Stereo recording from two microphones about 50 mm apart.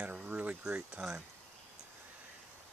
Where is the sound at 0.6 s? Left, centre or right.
Centre.